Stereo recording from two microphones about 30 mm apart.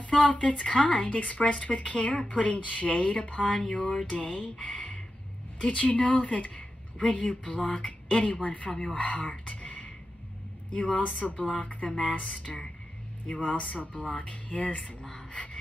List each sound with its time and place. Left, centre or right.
0.0 s a woman's voice: left
0.8 s a woman's voice: left
7.7 s a sound: left
8.2 s a woman's voice: left
10.7 s a woman's voice: left
12.5 s speech: centre
13.3 s a woman's voice: left
15.3 s gasp: left